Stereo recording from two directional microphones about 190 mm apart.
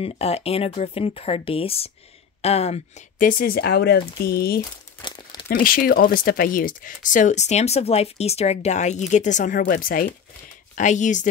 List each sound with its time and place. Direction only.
0.0 s speech: 30° left (ahead or behind); by 4.6 s 55° left (ahead or behind)
5.0 s crumpling: 25° left (ahead or behind)
5.5 s speech: 50° left (ahead or behind)